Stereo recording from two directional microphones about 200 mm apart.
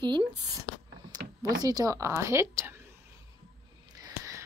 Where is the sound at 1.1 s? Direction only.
20° right (ahead or behind).